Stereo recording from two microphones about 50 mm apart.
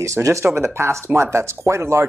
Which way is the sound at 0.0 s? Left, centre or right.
Right.